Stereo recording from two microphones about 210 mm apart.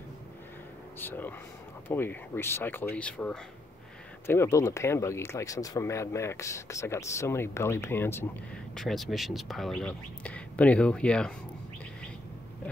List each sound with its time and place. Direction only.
0.9 s speech: 10° left (ahead or behind)